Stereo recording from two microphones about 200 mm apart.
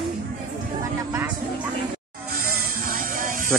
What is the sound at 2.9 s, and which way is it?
Music, 45° right (ahead or behind).